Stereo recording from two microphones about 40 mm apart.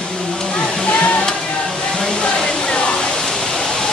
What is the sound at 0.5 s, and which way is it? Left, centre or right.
Waterfall, centre.